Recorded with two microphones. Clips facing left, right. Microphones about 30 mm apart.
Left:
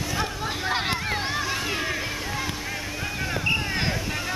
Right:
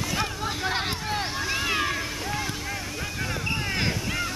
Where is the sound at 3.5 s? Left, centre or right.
Centre.